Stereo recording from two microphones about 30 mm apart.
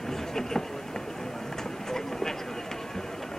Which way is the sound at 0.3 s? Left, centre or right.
Centre.